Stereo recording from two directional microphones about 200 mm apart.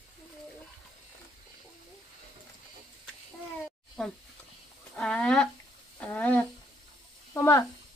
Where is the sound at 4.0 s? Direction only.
5° left (ahead or behind).